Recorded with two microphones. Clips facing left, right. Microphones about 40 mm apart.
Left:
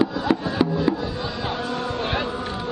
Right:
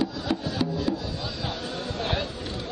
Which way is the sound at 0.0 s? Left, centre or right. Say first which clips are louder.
Left 6 dB; centre.